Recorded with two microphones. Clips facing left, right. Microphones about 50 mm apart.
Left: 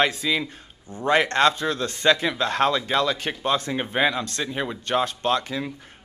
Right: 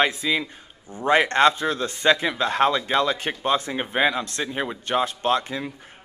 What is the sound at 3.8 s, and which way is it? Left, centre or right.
A man's voice, centre.